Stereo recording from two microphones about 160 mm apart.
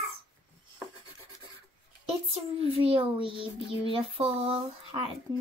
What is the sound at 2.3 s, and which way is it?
Speech, 35° right (ahead or behind).